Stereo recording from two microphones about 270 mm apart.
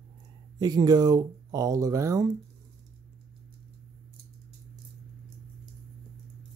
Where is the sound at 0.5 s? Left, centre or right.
Centre.